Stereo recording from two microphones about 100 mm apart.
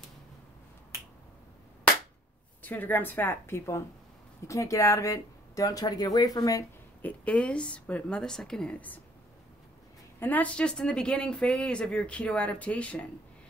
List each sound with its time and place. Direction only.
2.6 s a woman's voice: 20° left (ahead or behind); by 6.6 s 40° left (ahead or behind)
7.0 s speech: 15° left (ahead or behind)
10.2 s speech: 15° left (ahead or behind)